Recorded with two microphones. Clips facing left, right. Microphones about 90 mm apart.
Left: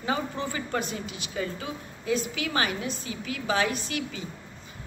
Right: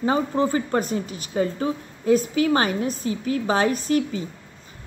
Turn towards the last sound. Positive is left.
turn(degrees=-40)  # may be behind; listen again after turning